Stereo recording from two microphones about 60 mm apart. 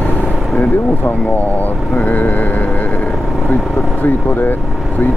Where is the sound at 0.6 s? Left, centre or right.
Left.